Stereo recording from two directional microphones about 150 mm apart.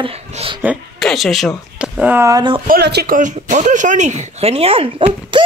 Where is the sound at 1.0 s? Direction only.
Centre (ahead or behind); by 2.4 s 15° right (ahead or behind).